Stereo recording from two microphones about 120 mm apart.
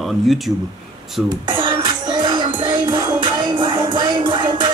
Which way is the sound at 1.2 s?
40° right (ahead or behind).